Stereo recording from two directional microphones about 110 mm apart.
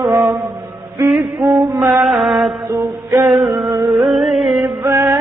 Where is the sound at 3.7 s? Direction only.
20° right (ahead or behind).